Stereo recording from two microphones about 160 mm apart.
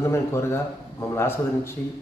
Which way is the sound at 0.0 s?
15° left (ahead or behind).